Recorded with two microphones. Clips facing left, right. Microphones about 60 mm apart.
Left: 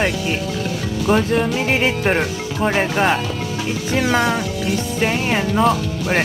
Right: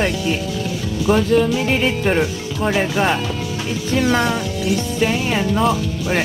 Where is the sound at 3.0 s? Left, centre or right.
Left.